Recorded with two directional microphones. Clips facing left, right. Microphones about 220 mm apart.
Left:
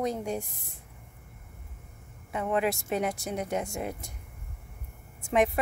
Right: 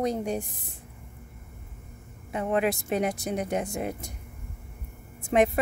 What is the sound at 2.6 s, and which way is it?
Speech, 20° right (ahead or behind).